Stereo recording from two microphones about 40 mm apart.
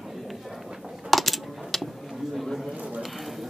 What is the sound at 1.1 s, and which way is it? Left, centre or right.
Coin, centre.